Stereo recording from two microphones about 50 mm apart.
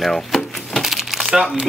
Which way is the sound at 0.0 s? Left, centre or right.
Centre.